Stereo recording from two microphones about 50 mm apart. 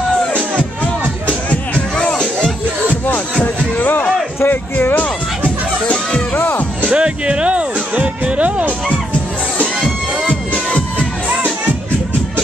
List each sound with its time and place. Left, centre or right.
1.2 s music: left
3.7 s a sound: left
4.5 s music: left
6.4 s music: left
6.9 s music: right
11.0 s music: right